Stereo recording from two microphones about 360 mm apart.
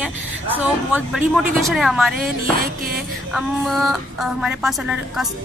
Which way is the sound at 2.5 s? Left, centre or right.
Right.